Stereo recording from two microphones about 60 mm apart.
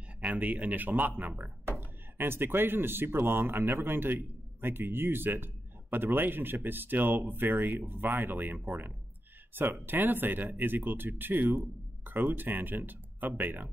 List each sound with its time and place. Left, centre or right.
0.2 s a man's voice: right